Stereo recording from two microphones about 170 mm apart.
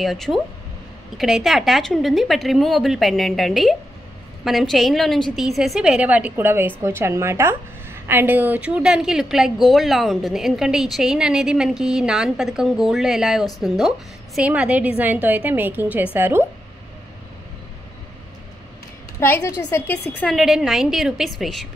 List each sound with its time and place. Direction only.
0.0 s a woman's voice: centre (ahead or behind)
19.1 s a woman's voice: 15° left (ahead or behind)
20.2 s a woman's voice: centre (ahead or behind)